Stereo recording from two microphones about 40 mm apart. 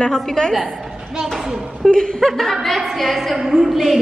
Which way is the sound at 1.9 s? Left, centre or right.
Left.